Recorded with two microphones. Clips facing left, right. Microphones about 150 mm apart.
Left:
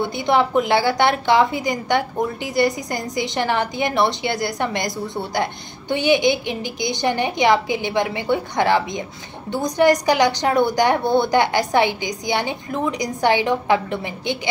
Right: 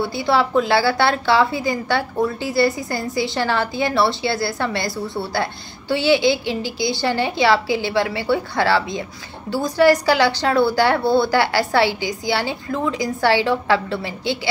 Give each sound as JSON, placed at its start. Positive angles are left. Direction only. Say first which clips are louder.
{"t": 0.0, "sound": "a woman's voice", "louder": "even", "side_deg": 20}